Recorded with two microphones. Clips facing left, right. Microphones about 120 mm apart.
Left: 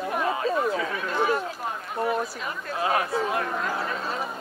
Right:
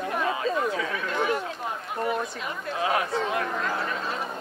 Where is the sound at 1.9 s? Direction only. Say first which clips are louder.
Left 2 dB; 5° left (ahead or behind).